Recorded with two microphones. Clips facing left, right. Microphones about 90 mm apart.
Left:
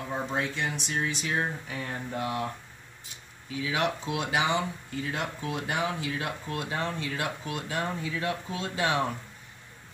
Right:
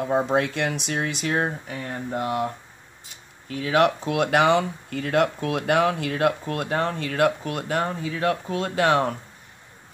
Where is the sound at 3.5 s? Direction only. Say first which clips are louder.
Right 9 dB; 55° right (ahead or behind).